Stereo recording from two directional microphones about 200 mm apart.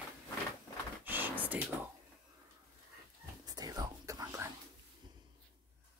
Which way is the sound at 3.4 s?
20° right (ahead or behind).